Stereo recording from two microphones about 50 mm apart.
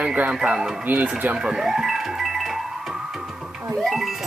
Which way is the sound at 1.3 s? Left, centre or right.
Centre.